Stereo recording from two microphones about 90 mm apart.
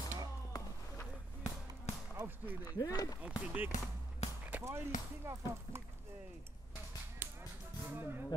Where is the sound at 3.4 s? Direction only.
15° right (ahead or behind).